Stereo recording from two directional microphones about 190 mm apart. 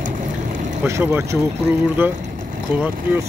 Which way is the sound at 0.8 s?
15° right (ahead or behind).